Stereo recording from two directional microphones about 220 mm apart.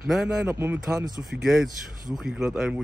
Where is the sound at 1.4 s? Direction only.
Centre (ahead or behind).